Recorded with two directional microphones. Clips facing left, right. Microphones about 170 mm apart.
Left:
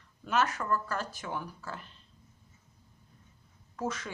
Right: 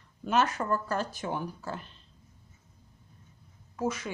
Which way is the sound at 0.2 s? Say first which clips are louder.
Right 3 dB; 25° right (ahead or behind).